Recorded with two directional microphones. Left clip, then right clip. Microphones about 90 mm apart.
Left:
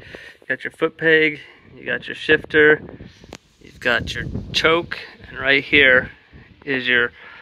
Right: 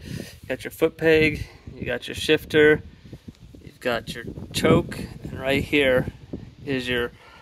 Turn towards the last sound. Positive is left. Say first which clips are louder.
# left 5 dB
turn(degrees=-10)  # may be behind; listen again after turning